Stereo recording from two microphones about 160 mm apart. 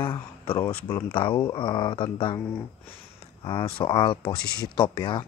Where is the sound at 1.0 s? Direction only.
30° left (ahead or behind).